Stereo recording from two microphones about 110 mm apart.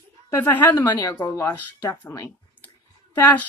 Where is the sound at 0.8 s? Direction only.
35° left (ahead or behind).